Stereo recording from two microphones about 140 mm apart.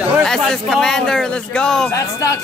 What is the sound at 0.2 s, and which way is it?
Speech, 5° left (ahead or behind).